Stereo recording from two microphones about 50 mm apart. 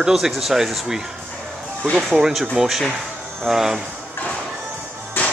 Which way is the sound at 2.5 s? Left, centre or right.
Centre.